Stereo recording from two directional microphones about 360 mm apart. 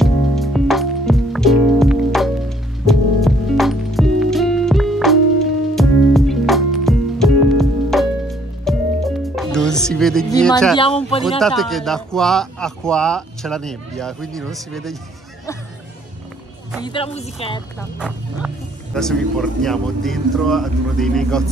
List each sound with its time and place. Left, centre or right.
0.0 s music: centre
10.3 s a sound: centre
11.2 s a man's voice: centre
16.8 s speech: centre
17.9 s a man's voice: centre